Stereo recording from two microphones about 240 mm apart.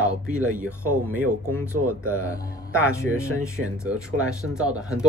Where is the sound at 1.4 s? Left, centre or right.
Right.